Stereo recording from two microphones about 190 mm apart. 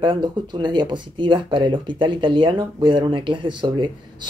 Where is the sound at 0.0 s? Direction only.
25° right (ahead or behind).